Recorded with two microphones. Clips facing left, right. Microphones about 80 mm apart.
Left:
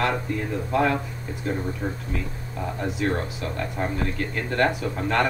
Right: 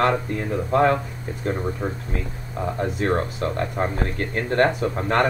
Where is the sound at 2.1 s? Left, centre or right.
Right.